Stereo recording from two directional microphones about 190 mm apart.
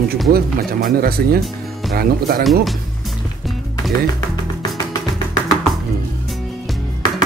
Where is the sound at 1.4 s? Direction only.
Centre (ahead or behind).